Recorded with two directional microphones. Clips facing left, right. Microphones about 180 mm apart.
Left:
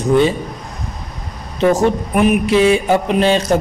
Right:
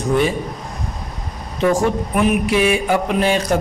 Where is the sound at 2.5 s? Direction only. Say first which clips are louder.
Left 4 dB; 25° left (ahead or behind).